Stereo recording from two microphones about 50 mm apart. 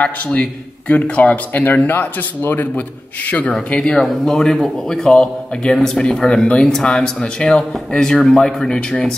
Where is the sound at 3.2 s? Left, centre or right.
Left.